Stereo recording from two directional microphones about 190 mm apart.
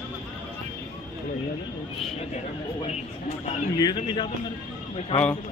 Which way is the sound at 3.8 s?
20° left (ahead or behind).